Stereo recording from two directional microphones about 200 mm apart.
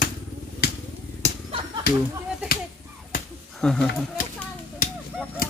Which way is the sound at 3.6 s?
5° left (ahead or behind).